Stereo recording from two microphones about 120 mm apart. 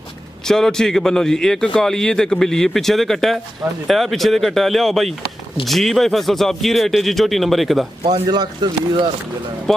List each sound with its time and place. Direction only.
0.5 s a man's voice: 5° left (ahead or behind)
8.0 s speech: 35° right (ahead or behind)
9.7 s a man's voice: centre (ahead or behind)